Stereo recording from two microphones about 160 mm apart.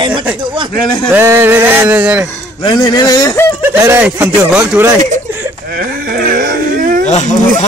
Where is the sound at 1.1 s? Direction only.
15° right (ahead or behind).